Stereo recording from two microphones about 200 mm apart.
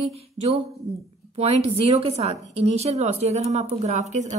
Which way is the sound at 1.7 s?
30° right (ahead or behind).